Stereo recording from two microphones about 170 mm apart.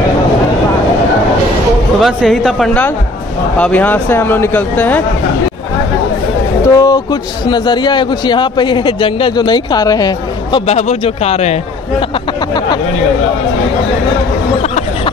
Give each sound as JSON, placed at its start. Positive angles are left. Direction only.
{"t": 2.0, "sound": "speech", "side_deg": 0}
{"t": 6.7, "sound": "a man's voice", "side_deg": 20}
{"t": 10.7, "sound": "speech", "side_deg": 40}